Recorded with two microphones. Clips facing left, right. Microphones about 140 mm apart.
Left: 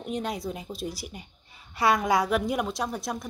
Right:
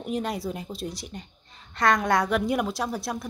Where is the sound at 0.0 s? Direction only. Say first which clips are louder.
Right 2 dB; centre (ahead or behind).